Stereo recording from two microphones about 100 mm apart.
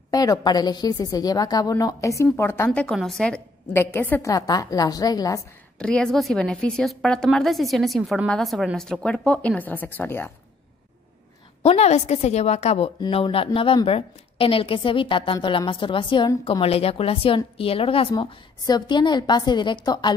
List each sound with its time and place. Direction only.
0.1 s a woman's voice: 40° left (ahead or behind); by 3.0 s 15° left (ahead or behind)
3.0 s a woman's voice: 5° left (ahead or behind)
3.7 s speech: 25° left (ahead or behind)
4.2 s a woman's voice: 35° left (ahead or behind)
5.8 s a woman's voice: 10° left (ahead or behind)
11.6 s a woman's voice: 90° left
13.1 s a woman's voice: 70° left (ahead or behind)
16.6 s speech: 80° left
18.7 s a woman's voice: 50° left (ahead or behind)